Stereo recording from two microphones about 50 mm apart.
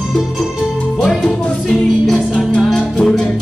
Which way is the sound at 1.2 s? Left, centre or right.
Centre.